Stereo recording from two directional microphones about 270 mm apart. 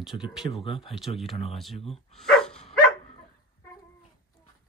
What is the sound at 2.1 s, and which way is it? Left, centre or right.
Dog, centre.